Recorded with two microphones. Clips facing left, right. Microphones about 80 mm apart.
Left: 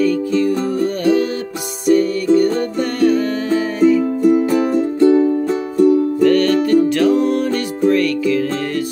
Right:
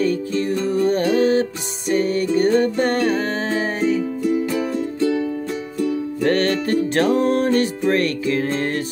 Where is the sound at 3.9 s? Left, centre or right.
Left.